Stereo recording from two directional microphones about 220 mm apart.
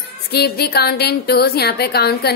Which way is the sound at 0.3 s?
45° left (ahead or behind).